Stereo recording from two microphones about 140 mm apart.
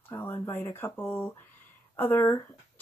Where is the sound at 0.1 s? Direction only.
15° left (ahead or behind).